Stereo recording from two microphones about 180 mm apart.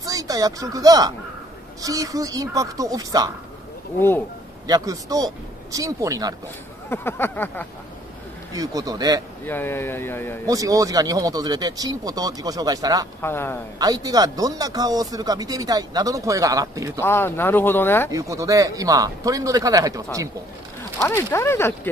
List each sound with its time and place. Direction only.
0.0 s speech: 20° right (ahead or behind)
4.6 s speech: 20° right (ahead or behind)
6.9 s speech: 10° left (ahead or behind)
8.5 s speech: 20° right (ahead or behind)
9.4 s speech: 10° left (ahead or behind)
10.4 s speech: 20° right (ahead or behind)
13.2 s speech: 15° left (ahead or behind)
13.7 s speech: 20° right (ahead or behind)
17.0 s speech: 10° left (ahead or behind)
18.1 s speech: 20° right (ahead or behind)
21.0 s speech: 15° left (ahead or behind)